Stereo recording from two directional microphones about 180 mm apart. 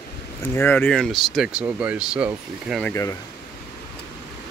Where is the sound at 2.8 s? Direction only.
15° left (ahead or behind).